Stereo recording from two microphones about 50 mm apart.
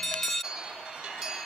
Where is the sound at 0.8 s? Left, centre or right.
Centre.